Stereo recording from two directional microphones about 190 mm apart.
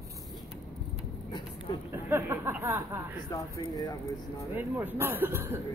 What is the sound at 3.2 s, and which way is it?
Speech, 20° left (ahead or behind).